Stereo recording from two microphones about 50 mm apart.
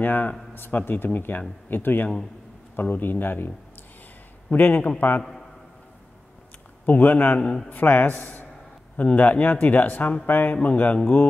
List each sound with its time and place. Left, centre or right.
0.0 s speech: left
6.9 s speech: left
7.3 s a man's voice: centre
8.9 s speech: left